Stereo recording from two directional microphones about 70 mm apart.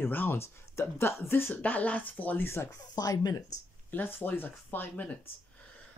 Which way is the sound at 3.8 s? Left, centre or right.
Left.